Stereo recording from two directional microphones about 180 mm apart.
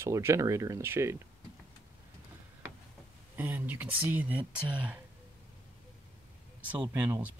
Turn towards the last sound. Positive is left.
turn(degrees=-10)  # may be behind; listen again after turning